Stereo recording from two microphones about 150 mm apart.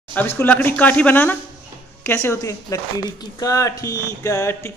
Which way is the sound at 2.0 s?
15° left (ahead or behind).